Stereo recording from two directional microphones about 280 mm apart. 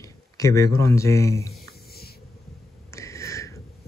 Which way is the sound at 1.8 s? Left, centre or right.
Left.